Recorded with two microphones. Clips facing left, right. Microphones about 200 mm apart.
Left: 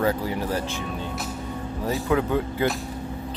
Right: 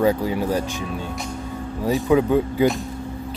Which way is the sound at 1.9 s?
15° right (ahead or behind).